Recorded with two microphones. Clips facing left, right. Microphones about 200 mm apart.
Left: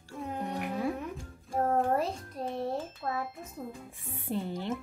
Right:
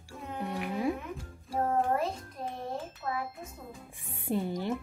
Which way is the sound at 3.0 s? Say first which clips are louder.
Right 1 dB; 30° left (ahead or behind).